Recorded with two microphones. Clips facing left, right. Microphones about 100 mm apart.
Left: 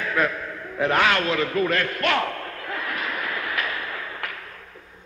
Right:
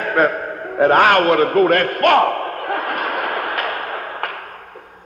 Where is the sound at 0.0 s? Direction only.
50° right (ahead or behind).